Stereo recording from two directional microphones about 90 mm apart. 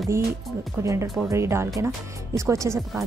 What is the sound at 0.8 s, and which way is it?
A woman's voice, 35° right (ahead or behind).